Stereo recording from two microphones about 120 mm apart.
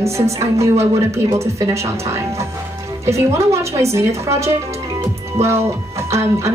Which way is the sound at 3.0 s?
25° right (ahead or behind).